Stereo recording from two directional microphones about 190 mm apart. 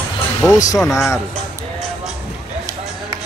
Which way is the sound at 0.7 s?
Centre (ahead or behind).